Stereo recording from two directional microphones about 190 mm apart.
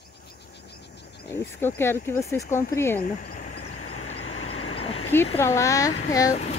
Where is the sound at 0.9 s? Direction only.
65° left (ahead or behind).